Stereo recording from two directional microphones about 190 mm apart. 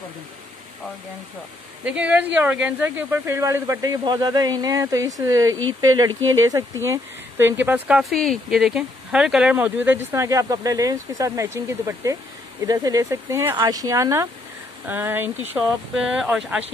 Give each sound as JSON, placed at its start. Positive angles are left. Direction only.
{"t": 1.9, "sound": "speech", "side_deg": -5}
{"t": 5.5, "sound": "speech", "side_deg": -90}
{"t": 5.8, "sound": "speech", "side_deg": -20}